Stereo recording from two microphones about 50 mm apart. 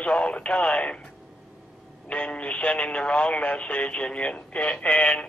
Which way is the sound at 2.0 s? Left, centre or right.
Left.